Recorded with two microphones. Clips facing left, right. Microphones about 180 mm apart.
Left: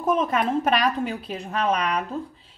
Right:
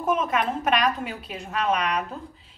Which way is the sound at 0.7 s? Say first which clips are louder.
Left 1 dB; 35° left (ahead or behind).